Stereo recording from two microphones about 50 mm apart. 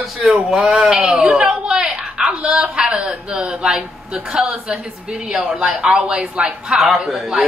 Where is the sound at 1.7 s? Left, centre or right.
Centre.